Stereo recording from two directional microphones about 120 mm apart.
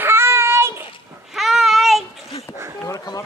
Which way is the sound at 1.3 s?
Centre (ahead or behind).